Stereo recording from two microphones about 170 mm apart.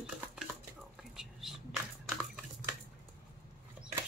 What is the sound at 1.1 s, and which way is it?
Whispering, centre (ahead or behind).